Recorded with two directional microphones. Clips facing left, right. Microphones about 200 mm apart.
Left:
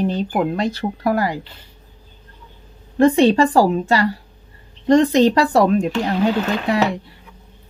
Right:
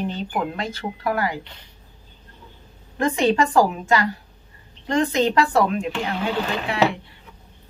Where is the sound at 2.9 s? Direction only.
35° left (ahead or behind).